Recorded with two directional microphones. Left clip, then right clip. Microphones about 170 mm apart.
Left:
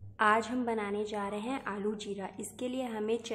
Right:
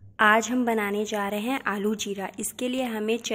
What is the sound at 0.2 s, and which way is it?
A woman's voice, 30° right (ahead or behind).